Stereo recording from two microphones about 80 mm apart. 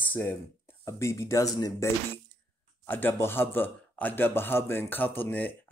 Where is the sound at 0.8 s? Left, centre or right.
Left.